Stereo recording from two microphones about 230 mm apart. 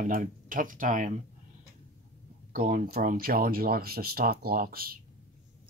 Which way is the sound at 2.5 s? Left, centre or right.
Right.